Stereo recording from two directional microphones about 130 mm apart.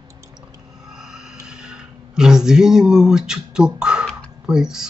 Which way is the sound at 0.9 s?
5° right (ahead or behind).